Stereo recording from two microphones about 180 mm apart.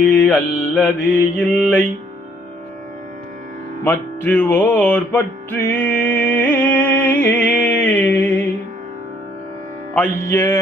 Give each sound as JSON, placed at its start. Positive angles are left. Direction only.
{"t": 0.0, "sound": "mantra", "side_deg": 10}
{"t": 3.8, "sound": "music", "side_deg": 10}
{"t": 9.9, "sound": "mantra", "side_deg": 15}